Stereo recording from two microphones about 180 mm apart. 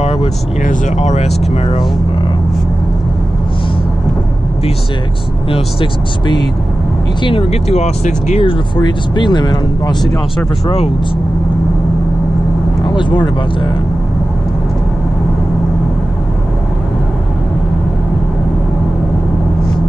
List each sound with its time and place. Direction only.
0.0 s speech: 35° left (ahead or behind)
5.5 s speech: 30° left (ahead or behind)
12.8 s speech: 25° left (ahead or behind)